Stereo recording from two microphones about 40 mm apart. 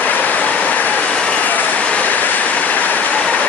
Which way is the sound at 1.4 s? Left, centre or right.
Left.